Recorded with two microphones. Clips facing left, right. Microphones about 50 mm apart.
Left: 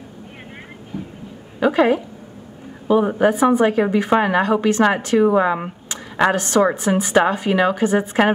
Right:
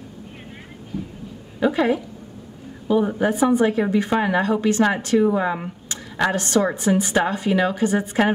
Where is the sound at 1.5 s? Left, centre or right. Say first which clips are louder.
Left 4 dB; left.